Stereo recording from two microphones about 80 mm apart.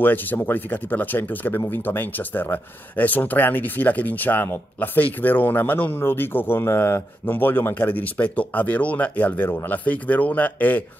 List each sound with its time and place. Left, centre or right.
0.0 s speech: left
9.5 s speech: left
9.8 s speech: centre